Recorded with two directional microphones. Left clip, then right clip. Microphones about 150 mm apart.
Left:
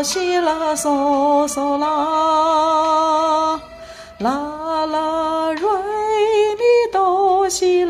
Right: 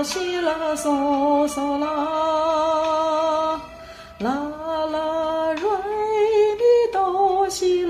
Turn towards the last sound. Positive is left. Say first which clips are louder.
# left 4 dB
turn(degrees=45)  # may be behind; listen again after turning